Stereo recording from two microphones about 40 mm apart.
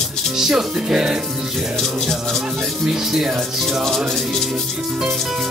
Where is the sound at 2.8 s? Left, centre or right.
Centre.